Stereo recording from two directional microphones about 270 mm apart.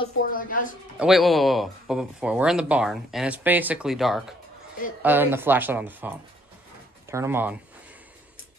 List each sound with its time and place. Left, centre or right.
0.3 s speech: left
0.9 s speech: centre